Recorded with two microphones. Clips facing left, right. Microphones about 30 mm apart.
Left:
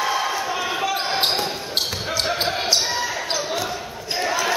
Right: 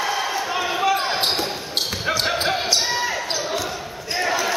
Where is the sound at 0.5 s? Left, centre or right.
Centre.